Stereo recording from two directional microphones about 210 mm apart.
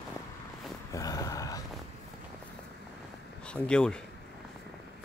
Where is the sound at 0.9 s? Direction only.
15° left (ahead or behind).